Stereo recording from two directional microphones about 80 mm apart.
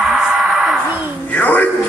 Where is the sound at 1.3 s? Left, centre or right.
Centre.